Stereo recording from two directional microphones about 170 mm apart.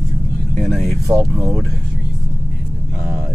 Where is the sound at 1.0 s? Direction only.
20° right (ahead or behind).